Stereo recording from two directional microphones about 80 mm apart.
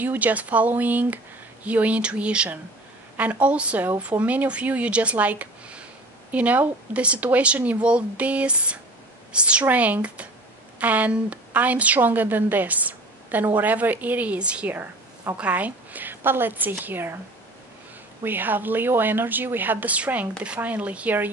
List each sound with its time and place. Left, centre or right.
0.0 s a woman's voice: right
18.2 s a woman's voice: right